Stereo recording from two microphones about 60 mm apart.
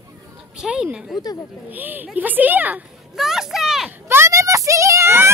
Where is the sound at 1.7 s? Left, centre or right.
Right.